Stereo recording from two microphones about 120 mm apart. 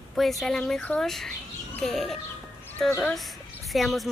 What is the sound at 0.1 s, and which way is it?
A woman's voice, centre (ahead or behind).